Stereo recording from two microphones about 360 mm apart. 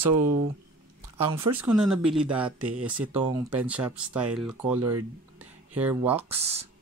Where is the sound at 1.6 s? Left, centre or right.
Centre.